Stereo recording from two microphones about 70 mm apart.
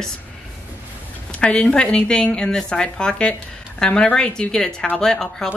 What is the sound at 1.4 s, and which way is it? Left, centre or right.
Speech, centre.